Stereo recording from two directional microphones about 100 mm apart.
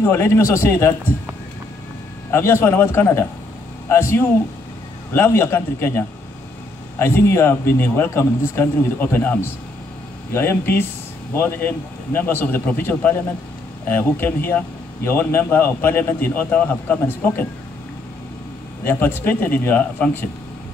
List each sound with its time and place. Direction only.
0.0 s speech: 25° left (ahead or behind)
2.3 s speech: 25° left (ahead or behind)
5.1 s speech: 25° left (ahead or behind)
18.9 s speech: 20° left (ahead or behind)